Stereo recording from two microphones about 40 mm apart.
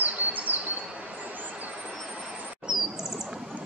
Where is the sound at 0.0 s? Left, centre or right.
Right.